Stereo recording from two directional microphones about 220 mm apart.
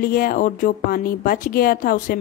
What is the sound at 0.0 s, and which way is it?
A woman's voice, 40° left (ahead or behind).